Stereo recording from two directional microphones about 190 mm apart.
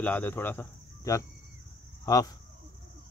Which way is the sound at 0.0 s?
10° left (ahead or behind).